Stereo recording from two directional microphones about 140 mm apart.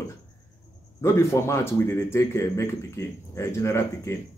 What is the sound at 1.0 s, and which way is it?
A man's voice, 20° left (ahead or behind).